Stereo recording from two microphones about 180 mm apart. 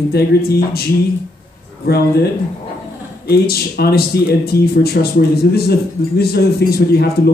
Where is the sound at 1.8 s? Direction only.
60° left (ahead or behind).